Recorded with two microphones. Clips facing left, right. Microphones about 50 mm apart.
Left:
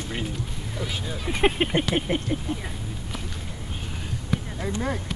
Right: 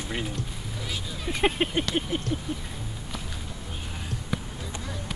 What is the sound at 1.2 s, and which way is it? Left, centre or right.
Speech, centre.